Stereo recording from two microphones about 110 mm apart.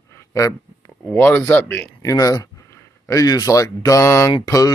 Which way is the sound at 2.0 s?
30° left (ahead or behind).